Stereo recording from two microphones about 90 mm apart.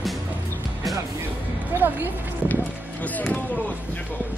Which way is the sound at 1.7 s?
20° right (ahead or behind).